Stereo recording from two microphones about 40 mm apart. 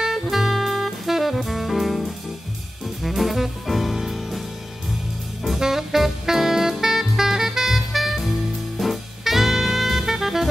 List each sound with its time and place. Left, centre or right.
0.3 s jazz: centre
3.0 s music: centre
5.6 s music: centre